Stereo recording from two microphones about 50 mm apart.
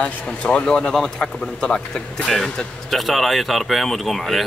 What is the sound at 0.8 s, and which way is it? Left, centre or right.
Speech, centre.